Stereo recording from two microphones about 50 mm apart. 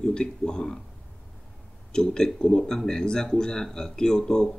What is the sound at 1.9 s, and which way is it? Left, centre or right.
Speech, centre.